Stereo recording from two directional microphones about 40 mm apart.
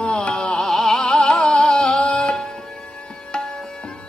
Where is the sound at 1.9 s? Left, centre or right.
Left.